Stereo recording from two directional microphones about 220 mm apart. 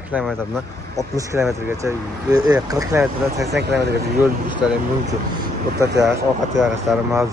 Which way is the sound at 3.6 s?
50° right (ahead or behind).